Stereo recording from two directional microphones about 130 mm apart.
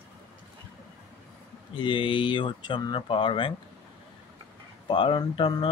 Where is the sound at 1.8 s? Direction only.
40° left (ahead or behind).